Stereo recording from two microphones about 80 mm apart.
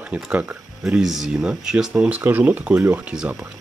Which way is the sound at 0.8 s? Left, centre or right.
Centre.